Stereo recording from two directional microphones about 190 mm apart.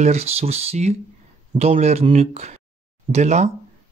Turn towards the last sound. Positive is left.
turn(degrees=-35)  # may be behind; listen again after turning